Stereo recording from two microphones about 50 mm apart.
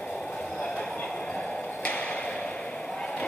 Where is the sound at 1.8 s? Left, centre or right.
Left.